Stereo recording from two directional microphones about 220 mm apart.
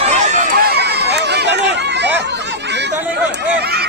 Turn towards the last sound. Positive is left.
turn(degrees=-45)  # may be behind; listen again after turning